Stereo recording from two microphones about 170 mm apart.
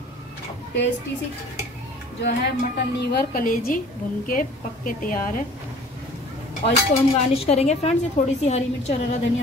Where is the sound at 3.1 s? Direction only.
55° left (ahead or behind).